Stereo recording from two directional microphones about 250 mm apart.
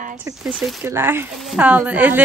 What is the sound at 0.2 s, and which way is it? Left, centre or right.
A woman's voice, centre.